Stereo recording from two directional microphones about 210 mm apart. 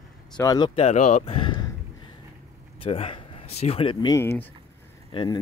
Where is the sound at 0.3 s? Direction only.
20° left (ahead or behind).